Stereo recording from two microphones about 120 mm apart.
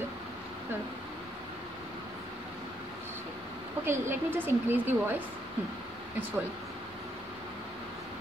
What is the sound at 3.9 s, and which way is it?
A woman's voice, 20° right (ahead or behind).